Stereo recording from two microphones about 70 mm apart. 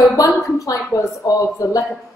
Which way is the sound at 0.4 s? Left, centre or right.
Left.